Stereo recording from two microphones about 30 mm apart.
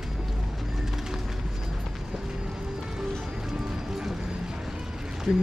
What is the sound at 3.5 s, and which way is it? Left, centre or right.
Music, centre.